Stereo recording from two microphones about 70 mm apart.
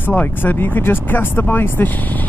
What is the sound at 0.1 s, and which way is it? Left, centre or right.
Speech, left.